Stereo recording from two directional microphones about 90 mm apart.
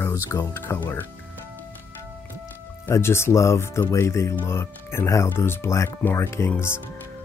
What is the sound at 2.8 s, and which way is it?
Speech, 30° left (ahead or behind).